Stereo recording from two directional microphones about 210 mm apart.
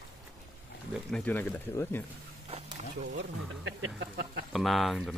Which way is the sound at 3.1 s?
60° right (ahead or behind).